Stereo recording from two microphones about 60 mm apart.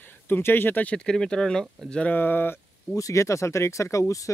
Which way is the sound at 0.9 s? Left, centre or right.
Centre.